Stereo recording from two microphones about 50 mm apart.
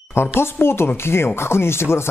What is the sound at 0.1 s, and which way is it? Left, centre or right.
Speech, left.